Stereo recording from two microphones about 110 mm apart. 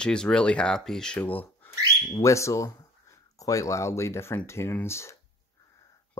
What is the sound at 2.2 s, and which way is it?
Speech, 25° left (ahead or behind).